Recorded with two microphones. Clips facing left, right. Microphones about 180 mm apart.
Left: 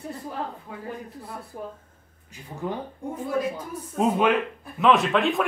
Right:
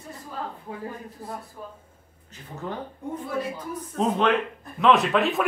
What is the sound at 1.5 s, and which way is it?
Speech, 60° left (ahead or behind).